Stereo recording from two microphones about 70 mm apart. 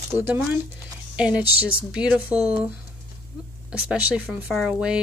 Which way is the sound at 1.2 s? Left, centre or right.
Centre.